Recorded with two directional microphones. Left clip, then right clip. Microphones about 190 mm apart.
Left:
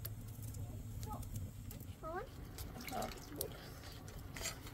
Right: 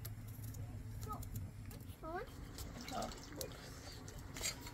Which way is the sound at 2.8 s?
Centre (ahead or behind).